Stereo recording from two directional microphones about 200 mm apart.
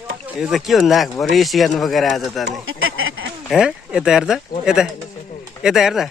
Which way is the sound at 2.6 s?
90° right.